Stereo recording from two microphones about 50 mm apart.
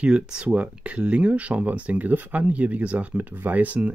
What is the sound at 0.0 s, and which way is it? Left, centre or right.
Speech, centre.